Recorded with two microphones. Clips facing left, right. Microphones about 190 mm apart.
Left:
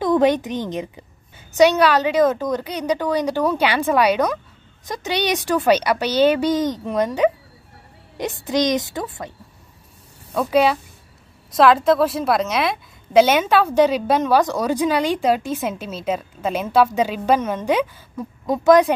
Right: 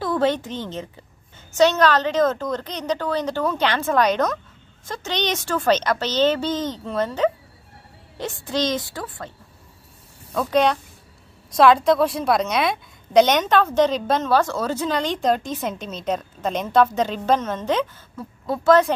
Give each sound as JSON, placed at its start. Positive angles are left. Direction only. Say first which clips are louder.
{"t": 0.0, "sound": "a woman's voice", "louder": "left 5 dB", "side_deg": 15}
{"t": 10.3, "sound": "a woman's voice", "louder": "left 2 dB", "side_deg": 10}